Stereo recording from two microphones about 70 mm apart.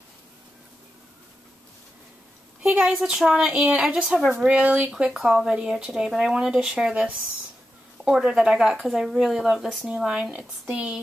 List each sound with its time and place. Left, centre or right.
2.6 s speech: centre